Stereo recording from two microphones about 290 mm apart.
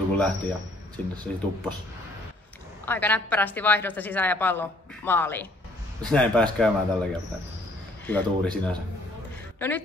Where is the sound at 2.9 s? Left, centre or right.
Centre.